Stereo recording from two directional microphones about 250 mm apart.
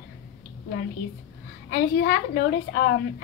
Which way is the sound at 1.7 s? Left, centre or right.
Left.